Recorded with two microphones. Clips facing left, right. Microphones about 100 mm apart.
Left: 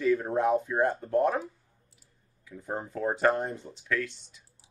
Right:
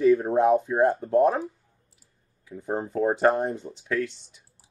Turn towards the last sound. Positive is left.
turn(degrees=-25)  # may be behind; listen again after turning